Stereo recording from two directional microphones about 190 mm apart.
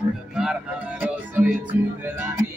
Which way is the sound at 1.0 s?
10° right (ahead or behind).